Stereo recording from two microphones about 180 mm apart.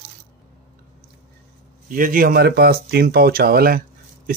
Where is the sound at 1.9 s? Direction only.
50° right (ahead or behind).